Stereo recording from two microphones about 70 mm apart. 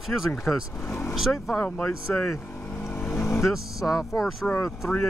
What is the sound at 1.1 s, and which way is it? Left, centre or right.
Speech, centre.